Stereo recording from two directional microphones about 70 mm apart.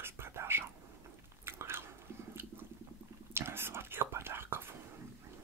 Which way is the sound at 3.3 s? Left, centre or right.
Right.